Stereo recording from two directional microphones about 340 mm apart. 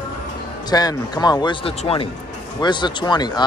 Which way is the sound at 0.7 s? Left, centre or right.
Centre.